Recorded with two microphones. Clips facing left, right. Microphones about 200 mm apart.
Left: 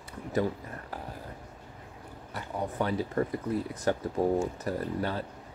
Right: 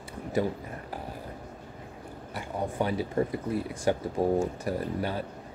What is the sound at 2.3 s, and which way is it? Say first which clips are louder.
Speech: right 2 dB; 10° right (ahead or behind).